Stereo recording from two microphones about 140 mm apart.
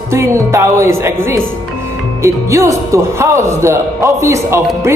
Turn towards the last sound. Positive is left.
turn(degrees=-20)  # may be behind; listen again after turning